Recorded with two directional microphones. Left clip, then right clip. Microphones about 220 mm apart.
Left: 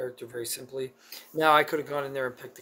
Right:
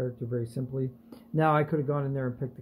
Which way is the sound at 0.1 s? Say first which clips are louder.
Right 1 dB; 15° left (ahead or behind).